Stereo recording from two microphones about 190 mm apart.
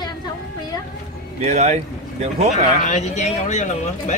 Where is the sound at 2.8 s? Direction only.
40° left (ahead or behind).